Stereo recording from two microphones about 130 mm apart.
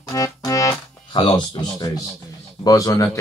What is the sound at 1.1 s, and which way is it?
Speech, 40° left (ahead or behind).